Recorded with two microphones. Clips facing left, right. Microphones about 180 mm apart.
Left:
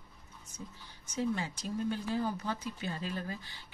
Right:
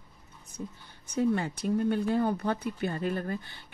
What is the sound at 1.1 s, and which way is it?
Speech, 60° right (ahead or behind).